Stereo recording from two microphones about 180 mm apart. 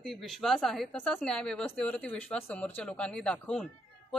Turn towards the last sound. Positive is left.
turn(degrees=5)  # may be behind; listen again after turning